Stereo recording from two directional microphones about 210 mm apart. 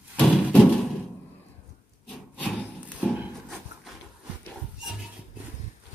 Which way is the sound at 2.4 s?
5° left (ahead or behind).